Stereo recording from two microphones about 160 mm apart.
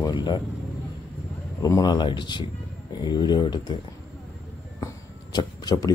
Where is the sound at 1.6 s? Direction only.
25° left (ahead or behind).